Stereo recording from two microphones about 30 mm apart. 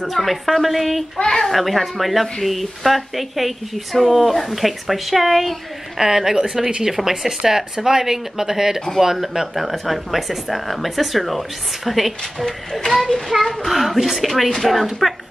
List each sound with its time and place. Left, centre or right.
0.0 s speech: centre
1.1 s a child's voice: left
1.4 s speech: centre
5.9 s speech: centre
13.7 s speech: centre
14.3 s speech: centre